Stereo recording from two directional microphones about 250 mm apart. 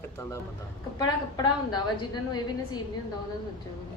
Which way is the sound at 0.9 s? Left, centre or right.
Centre.